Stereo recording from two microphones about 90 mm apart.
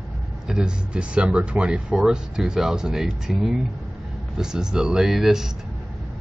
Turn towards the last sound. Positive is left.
turn(degrees=-5)  # may be behind; listen again after turning